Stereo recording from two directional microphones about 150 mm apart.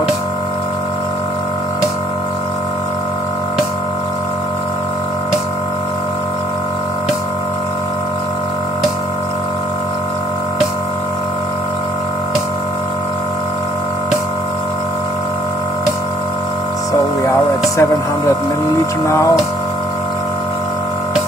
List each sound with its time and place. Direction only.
17.2 s hum: 20° left (ahead or behind)